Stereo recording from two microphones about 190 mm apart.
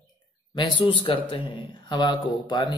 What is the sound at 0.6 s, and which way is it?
Speech, 30° left (ahead or behind).